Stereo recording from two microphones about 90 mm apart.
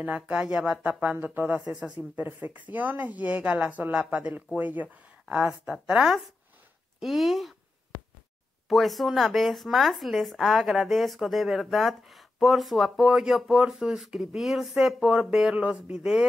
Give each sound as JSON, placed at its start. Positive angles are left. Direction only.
{"t": 0.0, "sound": "speech", "side_deg": -15}
{"t": 1.1, "sound": "speech", "side_deg": -20}
{"t": 8.6, "sound": "speech", "side_deg": 0}